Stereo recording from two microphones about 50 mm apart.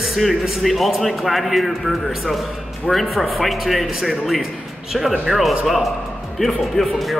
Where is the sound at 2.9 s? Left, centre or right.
Centre.